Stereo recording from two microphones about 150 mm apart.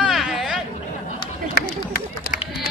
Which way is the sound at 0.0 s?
Centre (ahead or behind).